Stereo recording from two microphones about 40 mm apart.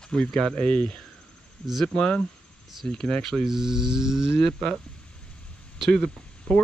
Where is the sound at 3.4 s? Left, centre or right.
Centre.